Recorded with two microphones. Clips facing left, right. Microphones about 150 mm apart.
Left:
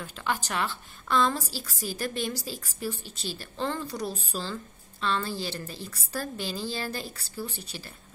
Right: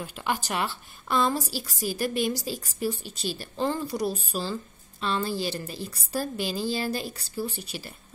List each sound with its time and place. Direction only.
0.0 s a woman's voice: 15° right (ahead or behind)